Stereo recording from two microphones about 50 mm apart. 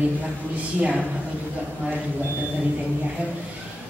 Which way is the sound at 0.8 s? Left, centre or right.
Right.